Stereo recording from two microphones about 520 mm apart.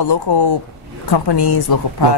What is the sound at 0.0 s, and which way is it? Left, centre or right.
Speech, left.